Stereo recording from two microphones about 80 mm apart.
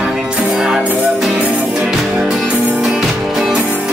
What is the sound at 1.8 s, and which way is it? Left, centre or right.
Music, centre.